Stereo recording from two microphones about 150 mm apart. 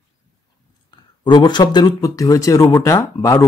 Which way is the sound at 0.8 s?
30° left (ahead or behind).